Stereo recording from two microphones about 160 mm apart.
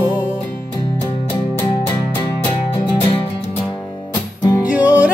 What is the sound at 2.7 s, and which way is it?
Music, 35° left (ahead or behind).